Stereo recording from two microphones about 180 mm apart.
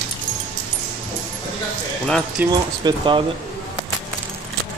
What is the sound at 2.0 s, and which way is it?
Speech, 5° left (ahead or behind).